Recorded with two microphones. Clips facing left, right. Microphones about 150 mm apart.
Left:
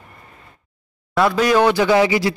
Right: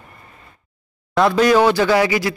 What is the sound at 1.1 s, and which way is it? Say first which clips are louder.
Speech: right 2 dB; 5° left (ahead or behind).